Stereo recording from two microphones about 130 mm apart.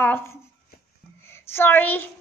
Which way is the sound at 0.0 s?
15° left (ahead or behind).